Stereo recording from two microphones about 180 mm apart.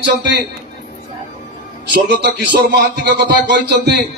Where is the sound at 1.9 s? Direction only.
65° right (ahead or behind).